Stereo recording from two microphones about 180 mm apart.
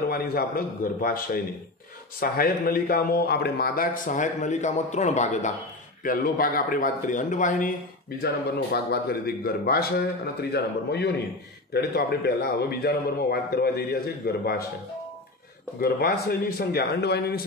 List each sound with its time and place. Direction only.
0.1 s a man's voice: 55° left (ahead or behind); by 5.5 s 40° left (ahead or behind)
6.0 s a man's voice: 55° left (ahead or behind)
8.7 s a man's voice: 60° left (ahead or behind)
15.8 s a man's voice: 55° left (ahead or behind)